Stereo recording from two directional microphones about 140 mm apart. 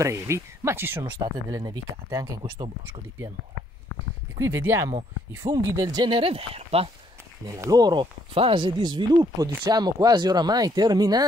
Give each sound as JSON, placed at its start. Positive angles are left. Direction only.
{"t": 0.0, "sound": "speech", "side_deg": -20}
{"t": 1.2, "sound": "speech", "side_deg": -30}
{"t": 4.4, "sound": "speech", "side_deg": -20}
{"t": 7.4, "sound": "speech", "side_deg": -20}